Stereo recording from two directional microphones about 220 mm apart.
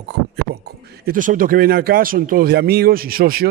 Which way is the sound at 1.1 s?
40° right (ahead or behind).